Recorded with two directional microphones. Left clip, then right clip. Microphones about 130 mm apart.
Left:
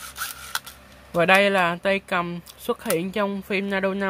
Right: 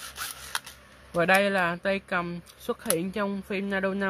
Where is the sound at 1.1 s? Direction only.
15° left (ahead or behind).